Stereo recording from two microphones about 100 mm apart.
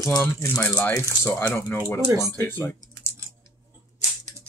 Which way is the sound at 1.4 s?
20° left (ahead or behind).